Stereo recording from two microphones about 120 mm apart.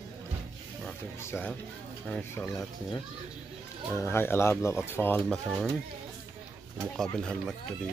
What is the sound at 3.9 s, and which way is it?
Speech, 20° left (ahead or behind).